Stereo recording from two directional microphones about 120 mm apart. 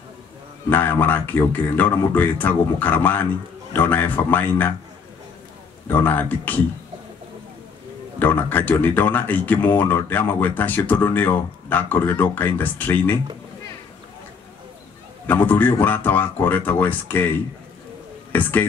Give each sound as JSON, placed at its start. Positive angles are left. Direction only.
{"t": 0.7, "sound": "speech", "side_deg": 15}
{"t": 5.9, "sound": "speech", "side_deg": 15}
{"t": 8.2, "sound": "speech", "side_deg": 15}
{"t": 15.2, "sound": "speech", "side_deg": 15}